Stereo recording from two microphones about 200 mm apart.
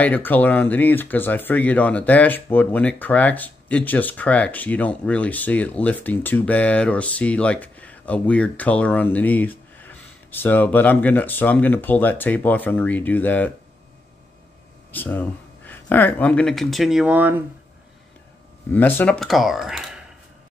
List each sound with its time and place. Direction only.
0.0 s speech: 10° left (ahead or behind)
14.9 s speech: 10° left (ahead or behind); by 17.4 s 10° right (ahead or behind)
18.7 s speech: 10° left (ahead or behind)